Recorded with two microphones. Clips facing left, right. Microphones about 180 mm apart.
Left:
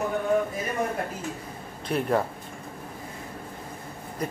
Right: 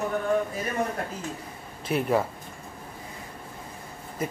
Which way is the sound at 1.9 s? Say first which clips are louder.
Even; 5° right (ahead or behind).